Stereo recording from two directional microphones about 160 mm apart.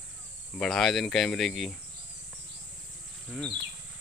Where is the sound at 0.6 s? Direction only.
Centre (ahead or behind).